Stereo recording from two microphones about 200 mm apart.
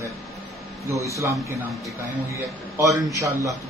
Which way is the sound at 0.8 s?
15° right (ahead or behind).